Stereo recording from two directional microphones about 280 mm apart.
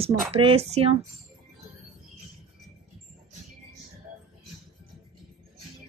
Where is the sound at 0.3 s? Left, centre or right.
Right.